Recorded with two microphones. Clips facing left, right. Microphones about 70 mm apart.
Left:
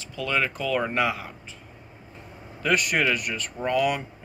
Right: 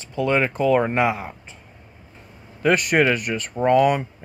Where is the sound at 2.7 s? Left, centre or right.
Right.